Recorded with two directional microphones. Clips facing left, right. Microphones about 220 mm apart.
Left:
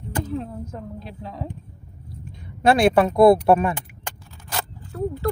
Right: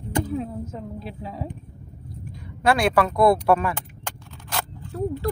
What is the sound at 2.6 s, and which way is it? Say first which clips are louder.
Speech: left 4 dB; 25° left (ahead or behind).